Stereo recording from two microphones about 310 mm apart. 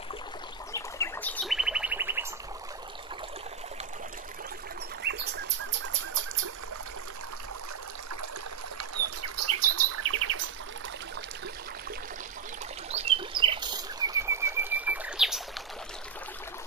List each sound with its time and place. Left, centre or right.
0.7 s bird: centre
5.0 s bird: right
8.7 s bird: right
12.9 s bird: centre